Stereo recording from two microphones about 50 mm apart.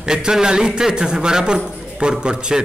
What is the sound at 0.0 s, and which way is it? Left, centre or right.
A man's voice, centre.